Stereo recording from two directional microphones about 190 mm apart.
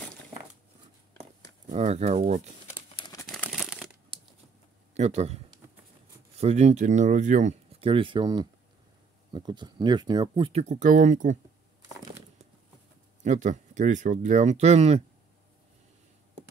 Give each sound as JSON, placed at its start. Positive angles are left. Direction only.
{"t": 1.7, "sound": "speech", "side_deg": -35}
{"t": 3.0, "sound": "crumpling", "side_deg": 20}
{"t": 3.4, "sound": "crumpling", "side_deg": -5}
{"t": 4.9, "sound": "speech", "side_deg": -35}
{"t": 13.2, "sound": "speech", "side_deg": -40}